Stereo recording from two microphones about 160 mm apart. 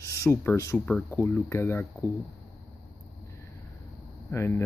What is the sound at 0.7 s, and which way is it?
Speech, 5° left (ahead or behind).